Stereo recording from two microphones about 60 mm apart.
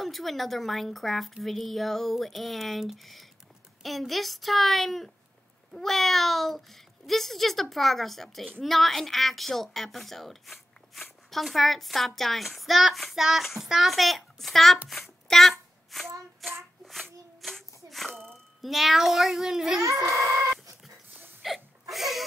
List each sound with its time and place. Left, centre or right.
0.0 s a woman's voice: centre
15.9 s hands: centre
16.4 s a woman's voice: centre
16.8 s a sound: centre
19.8 s speech: right
21.4 s hiccup: centre